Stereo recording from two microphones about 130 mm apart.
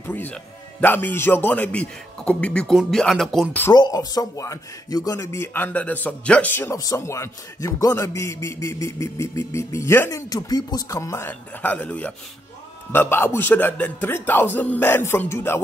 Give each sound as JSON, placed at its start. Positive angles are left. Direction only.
{"t": 0.0, "sound": "a man's voice", "side_deg": 15}
{"t": 3.7, "sound": "a man's voice", "side_deg": 30}